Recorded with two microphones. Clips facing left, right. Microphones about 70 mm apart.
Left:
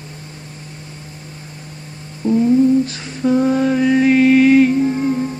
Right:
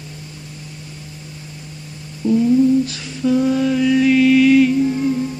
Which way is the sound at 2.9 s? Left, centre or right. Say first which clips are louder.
Left 1 dB; left.